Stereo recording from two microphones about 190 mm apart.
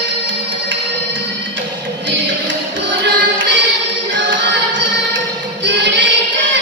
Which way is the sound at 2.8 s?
70° right (ahead or behind).